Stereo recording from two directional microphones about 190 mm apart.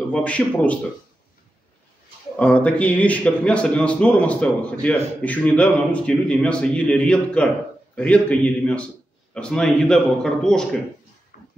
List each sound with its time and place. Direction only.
0.1 s speech: 5° left (ahead or behind)
2.3 s a man's voice: 5° left (ahead or behind)
11.3 s a sound: 50° left (ahead or behind)